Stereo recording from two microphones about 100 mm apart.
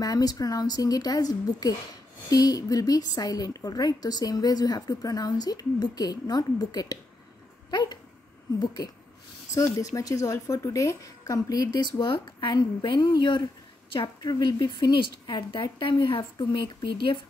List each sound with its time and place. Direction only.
0.0 s a woman's voice: 40° left (ahead or behind); by 17.2 s 55° left (ahead or behind)